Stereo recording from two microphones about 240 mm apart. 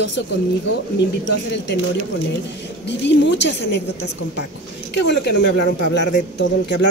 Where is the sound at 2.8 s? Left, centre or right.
Left.